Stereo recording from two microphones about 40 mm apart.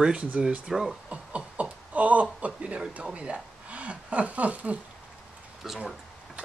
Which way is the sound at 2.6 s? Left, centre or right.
Right.